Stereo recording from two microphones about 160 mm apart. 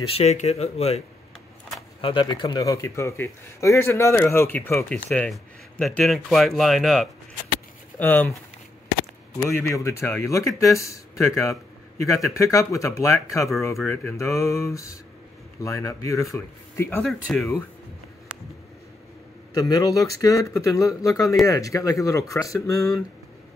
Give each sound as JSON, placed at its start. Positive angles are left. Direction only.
{"t": 0.0, "sound": "speech", "side_deg": 40}
{"t": 9.6, "sound": "speech", "side_deg": 20}
{"t": 17.0, "sound": "speech", "side_deg": 0}
{"t": 19.5, "sound": "speech", "side_deg": 20}